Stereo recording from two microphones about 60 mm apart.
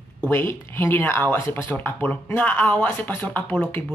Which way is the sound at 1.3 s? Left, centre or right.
Left.